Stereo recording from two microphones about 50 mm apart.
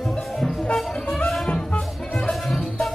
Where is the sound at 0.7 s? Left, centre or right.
Centre.